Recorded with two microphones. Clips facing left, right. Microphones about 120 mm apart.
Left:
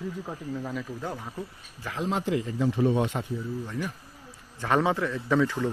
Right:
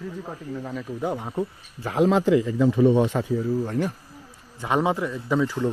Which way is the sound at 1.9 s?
90° right.